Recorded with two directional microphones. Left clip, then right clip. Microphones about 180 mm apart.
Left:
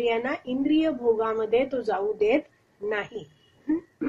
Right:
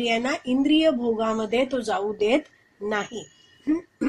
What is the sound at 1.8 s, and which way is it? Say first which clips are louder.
Speech: right 1 dB; 30° right (ahead or behind).